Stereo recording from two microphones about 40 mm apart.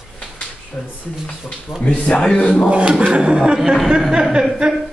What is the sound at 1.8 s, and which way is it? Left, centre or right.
Speech, left.